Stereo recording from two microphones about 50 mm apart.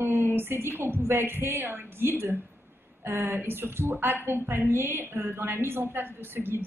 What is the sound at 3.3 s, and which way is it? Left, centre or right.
A woman's voice, right.